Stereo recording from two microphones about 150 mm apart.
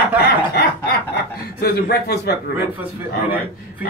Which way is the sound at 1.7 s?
90° left.